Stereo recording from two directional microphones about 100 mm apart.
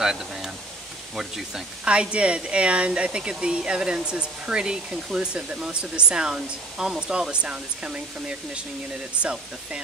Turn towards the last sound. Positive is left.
turn(degrees=-10)  # may be behind; listen again after turning